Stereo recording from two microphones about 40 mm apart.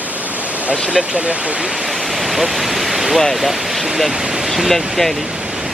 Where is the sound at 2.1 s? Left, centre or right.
Centre.